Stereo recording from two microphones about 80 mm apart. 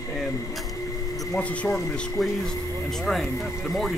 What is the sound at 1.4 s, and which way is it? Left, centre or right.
Speech, centre.